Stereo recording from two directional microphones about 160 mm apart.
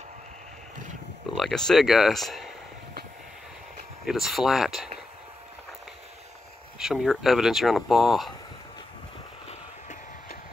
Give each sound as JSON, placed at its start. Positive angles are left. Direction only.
{"t": 1.3, "sound": "speech", "side_deg": 0}
{"t": 4.0, "sound": "speech", "side_deg": 0}
{"t": 6.8, "sound": "speech", "side_deg": 0}
{"t": 9.5, "sound": "a sound", "side_deg": 50}